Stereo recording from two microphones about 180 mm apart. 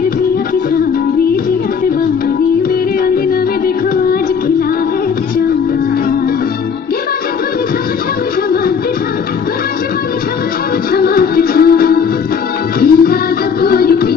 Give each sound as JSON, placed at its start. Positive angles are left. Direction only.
{"t": 10.9, "sound": "music", "side_deg": 55}